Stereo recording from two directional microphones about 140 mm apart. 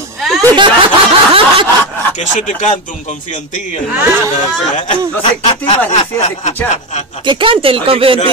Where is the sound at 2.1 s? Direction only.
60° left (ahead or behind).